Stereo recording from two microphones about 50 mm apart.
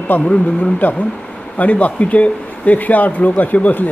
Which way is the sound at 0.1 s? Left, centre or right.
Left.